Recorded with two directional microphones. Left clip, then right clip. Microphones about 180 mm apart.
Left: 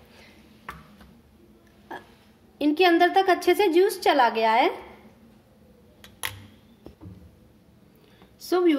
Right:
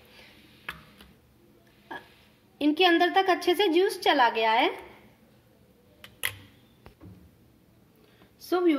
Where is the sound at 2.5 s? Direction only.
Centre (ahead or behind).